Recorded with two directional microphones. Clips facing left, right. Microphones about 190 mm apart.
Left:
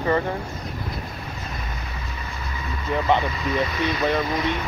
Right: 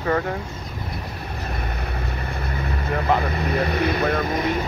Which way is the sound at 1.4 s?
60° right (ahead or behind).